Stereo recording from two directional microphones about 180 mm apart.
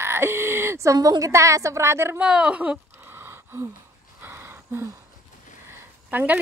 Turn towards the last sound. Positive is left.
turn(degrees=-10)  # may be behind; listen again after turning